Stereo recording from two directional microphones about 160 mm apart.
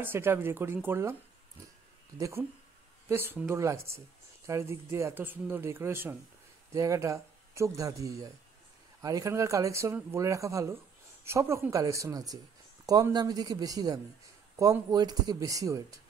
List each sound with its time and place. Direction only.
0.0 s speech: 15° right (ahead or behind)
2.1 s speech: 20° right (ahead or behind)